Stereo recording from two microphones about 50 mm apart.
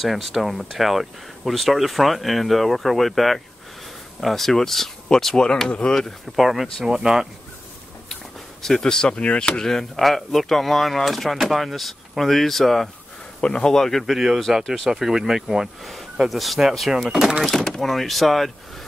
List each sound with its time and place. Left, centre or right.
0.0 s speech: centre
5.9 s speech: centre
8.6 s speech: centre
9.9 s speech: centre
13.4 s speech: centre
13.7 s speech: centre
14.1 s speech: centre
17.5 s speech: centre